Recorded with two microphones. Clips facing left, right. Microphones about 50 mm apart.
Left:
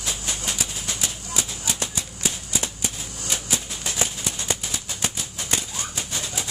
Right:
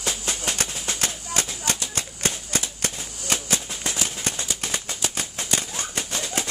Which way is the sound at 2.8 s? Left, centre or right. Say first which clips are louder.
Right 1 dB; right.